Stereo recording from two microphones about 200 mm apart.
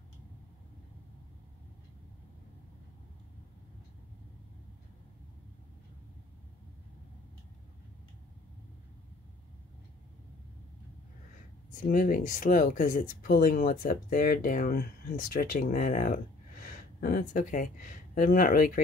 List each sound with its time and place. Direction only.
11.8 s speech: 45° left (ahead or behind)